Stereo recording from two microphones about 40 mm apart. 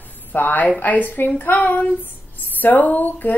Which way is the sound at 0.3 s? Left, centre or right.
Left.